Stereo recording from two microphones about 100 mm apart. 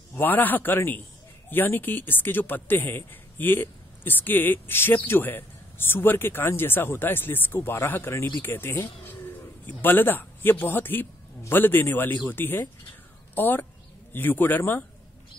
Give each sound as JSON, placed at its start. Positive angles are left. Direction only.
{"t": 0.1, "sound": "speech", "side_deg": 20}